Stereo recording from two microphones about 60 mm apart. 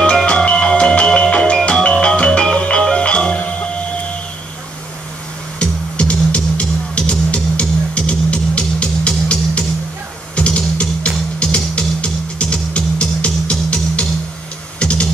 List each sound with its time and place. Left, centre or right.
0.0 s music: centre
5.6 s music: centre